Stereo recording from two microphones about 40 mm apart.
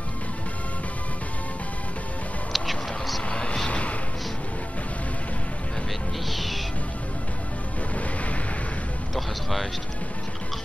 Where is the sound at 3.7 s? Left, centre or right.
Left.